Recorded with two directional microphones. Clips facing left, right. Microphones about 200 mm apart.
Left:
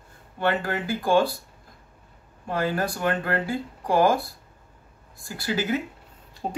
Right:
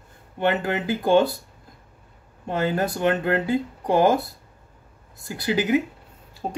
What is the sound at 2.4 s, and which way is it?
Speech, 20° right (ahead or behind).